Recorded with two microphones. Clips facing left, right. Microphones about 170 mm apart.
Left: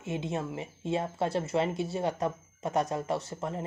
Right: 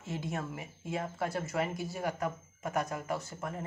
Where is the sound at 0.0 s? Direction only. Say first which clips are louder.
Left 4 dB; 20° left (ahead or behind).